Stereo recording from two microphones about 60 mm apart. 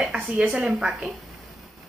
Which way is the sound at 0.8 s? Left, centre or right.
Centre.